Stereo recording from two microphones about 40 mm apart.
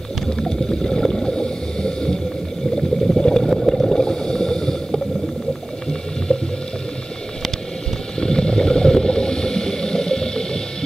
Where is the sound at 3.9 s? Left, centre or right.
Centre.